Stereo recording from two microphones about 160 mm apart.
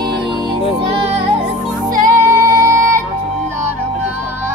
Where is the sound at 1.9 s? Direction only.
15° right (ahead or behind).